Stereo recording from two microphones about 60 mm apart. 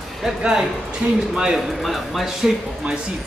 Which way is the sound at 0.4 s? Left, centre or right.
Centre.